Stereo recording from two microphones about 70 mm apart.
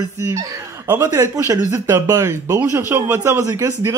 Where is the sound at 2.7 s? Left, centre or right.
Right.